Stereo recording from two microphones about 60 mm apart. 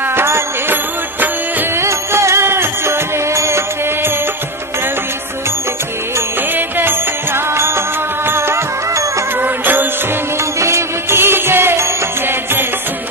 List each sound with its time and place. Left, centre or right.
0.1 s music: right
1.8 s music: right
6.8 s music: right
9.4 s music: right
10.6 s music: right